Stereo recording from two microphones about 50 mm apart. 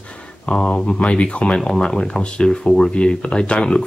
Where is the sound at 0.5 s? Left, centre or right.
Centre.